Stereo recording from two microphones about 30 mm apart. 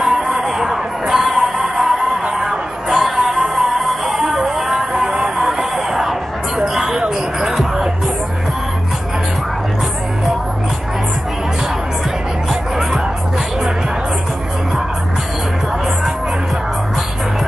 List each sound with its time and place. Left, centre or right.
0.3 s music: centre
5.0 s a sound: right
7.4 s music: centre